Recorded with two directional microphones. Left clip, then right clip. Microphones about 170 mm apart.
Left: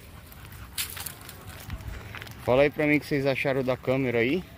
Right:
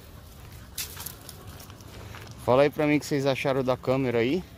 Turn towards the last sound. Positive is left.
turn(degrees=-5)  # may be behind; listen again after turning